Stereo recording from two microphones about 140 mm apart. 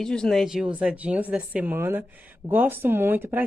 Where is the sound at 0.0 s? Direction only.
5° left (ahead or behind).